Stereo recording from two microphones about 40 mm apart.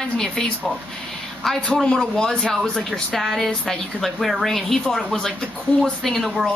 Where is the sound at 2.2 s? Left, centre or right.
Centre.